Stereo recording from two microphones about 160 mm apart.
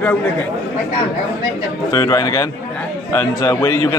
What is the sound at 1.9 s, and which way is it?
A man's voice, 20° left (ahead or behind).